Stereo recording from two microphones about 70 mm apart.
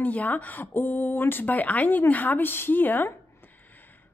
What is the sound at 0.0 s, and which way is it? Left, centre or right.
Speech, left.